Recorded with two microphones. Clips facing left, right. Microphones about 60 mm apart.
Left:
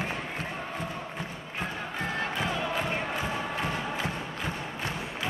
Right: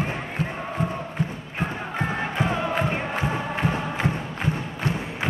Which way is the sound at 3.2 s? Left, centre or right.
Right.